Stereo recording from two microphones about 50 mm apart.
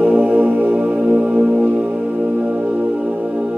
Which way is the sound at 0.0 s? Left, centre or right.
Right.